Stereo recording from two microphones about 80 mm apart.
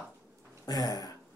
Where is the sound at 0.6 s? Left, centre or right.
Left.